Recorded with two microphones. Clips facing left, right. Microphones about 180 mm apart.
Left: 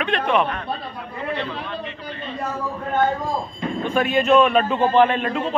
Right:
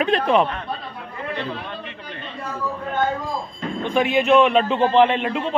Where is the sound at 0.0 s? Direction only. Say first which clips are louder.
Right 3 dB; 35° right (ahead or behind).